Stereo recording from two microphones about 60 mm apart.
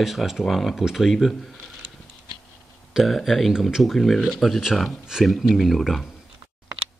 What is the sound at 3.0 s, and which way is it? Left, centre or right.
Speech, centre.